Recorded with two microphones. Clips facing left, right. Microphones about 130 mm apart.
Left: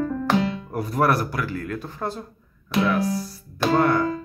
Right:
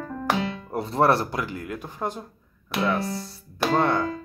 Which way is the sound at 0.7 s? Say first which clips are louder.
Right 1 dB; 25° right (ahead or behind).